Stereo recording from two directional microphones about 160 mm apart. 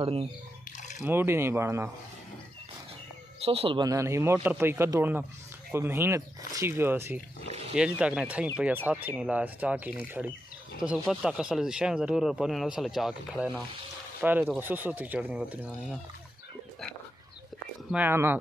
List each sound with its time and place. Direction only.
0.0 s speech: 40° right (ahead or behind)
1.0 s speech: 15° right (ahead or behind)
3.4 s speech: 35° right (ahead or behind); by 16.0 s 10° right (ahead or behind)
17.9 s speech: 15° right (ahead or behind)